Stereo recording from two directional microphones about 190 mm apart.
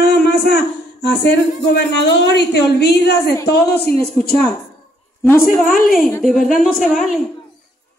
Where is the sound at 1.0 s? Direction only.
65° left (ahead or behind).